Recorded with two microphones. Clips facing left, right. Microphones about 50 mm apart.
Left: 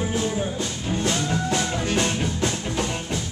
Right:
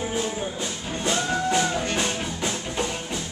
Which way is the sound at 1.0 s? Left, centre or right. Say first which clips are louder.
Right 2 dB; centre.